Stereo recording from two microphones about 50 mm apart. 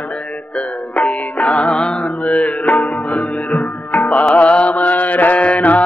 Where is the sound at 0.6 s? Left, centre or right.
Left.